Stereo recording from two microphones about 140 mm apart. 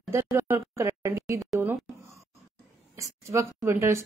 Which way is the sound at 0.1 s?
20° right (ahead or behind).